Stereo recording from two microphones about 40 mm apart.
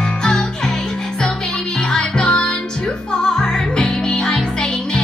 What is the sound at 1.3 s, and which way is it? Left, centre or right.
Music, left.